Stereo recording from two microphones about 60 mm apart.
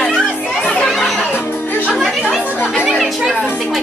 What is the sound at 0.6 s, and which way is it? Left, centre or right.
Chatter, centre.